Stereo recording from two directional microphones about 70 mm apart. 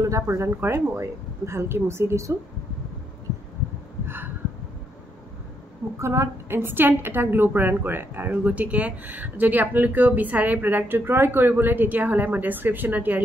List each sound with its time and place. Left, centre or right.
0.0 s speech: right
5.9 s a woman's voice: right